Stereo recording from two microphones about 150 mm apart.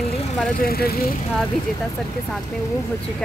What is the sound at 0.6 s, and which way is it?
Vehicle, 90° left.